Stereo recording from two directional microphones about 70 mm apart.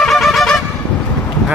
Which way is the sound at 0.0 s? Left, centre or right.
Centre.